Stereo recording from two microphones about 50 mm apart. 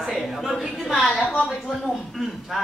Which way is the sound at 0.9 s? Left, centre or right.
Centre.